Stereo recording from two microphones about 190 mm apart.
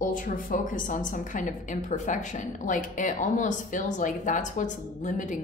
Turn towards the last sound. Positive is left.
turn(degrees=40)  # may be behind; listen again after turning